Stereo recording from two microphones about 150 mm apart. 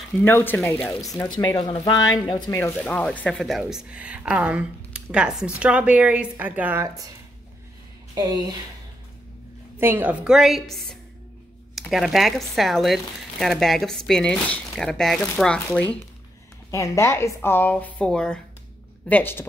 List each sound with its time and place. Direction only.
0.2 s a woman's voice: 15° left (ahead or behind)
1.4 s speech: 30° left (ahead or behind)
2.5 s speech: 10° left (ahead or behind); by 6.9 s 10° right (ahead or behind)
8.1 s speech: 25° right (ahead or behind)
9.8 s a woman's voice: 15° right (ahead or behind); by 19.4 s 10° left (ahead or behind)